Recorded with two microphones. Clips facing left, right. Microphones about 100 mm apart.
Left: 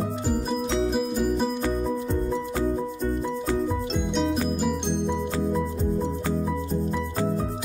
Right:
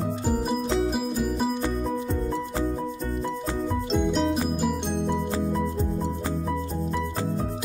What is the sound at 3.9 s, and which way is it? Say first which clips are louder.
Music: right 2 dB; centre (ahead or behind).